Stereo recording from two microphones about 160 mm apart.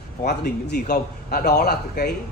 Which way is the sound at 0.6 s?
90° left.